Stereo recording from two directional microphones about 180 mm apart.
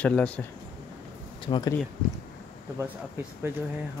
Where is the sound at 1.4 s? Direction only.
25° left (ahead or behind).